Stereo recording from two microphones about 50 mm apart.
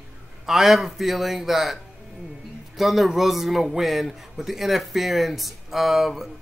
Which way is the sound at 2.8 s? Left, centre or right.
Centre.